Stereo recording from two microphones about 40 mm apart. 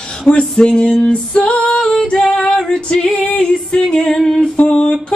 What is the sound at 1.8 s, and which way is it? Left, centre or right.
Female singing, centre.